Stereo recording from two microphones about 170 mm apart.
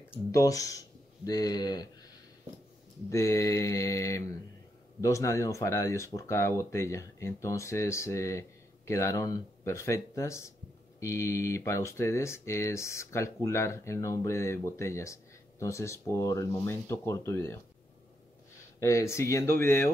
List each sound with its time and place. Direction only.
0.1 s speech: 20° left (ahead or behind)
3.1 s speech: 15° left (ahead or behind)
18.8 s speech: 15° left (ahead or behind)